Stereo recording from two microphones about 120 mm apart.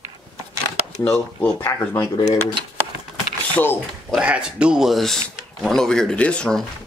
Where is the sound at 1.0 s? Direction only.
15° left (ahead or behind).